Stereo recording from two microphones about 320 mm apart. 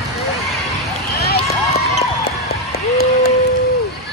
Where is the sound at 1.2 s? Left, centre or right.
Left.